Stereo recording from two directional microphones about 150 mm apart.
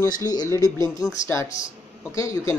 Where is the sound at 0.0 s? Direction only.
25° left (ahead or behind).